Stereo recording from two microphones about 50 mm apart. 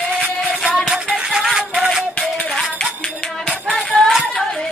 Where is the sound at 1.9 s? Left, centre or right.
Centre.